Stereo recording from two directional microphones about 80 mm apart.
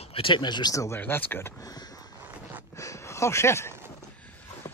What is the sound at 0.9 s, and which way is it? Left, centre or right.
Speech, left.